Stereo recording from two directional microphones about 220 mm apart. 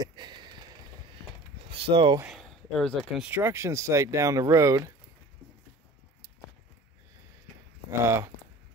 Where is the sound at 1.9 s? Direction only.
20° right (ahead or behind).